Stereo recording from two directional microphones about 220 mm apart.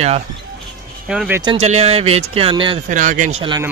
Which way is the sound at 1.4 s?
30° right (ahead or behind).